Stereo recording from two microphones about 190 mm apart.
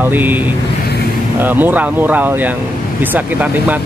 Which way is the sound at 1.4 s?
10° right (ahead or behind).